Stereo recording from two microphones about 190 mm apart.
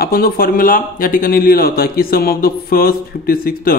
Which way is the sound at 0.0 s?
50° left (ahead or behind).